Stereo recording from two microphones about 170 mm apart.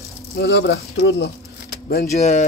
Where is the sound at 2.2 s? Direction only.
45° left (ahead or behind).